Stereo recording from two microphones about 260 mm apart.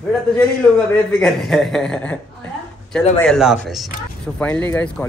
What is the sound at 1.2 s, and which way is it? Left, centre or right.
A man's voice, centre.